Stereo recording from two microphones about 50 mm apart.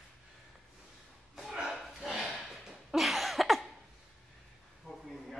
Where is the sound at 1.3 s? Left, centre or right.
Centre.